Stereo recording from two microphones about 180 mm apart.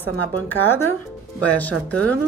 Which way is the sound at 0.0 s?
10° left (ahead or behind).